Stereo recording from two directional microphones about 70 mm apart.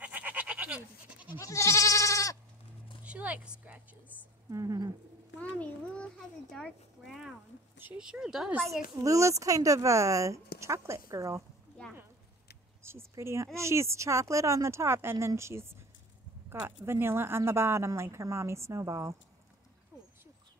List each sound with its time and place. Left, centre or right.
0.0 s goat: right
1.4 s goat: left
3.0 s speech: centre
4.5 s speech: right
5.4 s a child's voice: centre
7.1 s speech: centre
7.7 s a sound: right
8.0 s speech: centre
9.0 s speech: right
13.1 s speech: right